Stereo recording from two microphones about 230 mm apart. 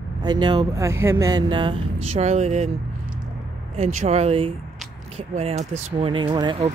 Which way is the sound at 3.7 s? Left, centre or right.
Right.